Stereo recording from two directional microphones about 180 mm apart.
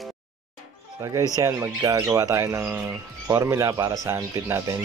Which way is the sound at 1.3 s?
15° right (ahead or behind).